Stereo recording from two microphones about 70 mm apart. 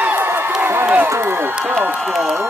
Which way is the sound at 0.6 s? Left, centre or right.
Right.